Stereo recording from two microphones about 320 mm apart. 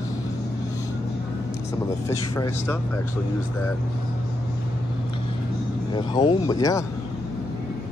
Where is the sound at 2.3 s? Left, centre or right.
Centre.